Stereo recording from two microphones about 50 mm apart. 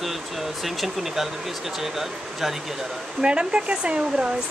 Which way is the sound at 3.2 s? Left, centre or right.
Right.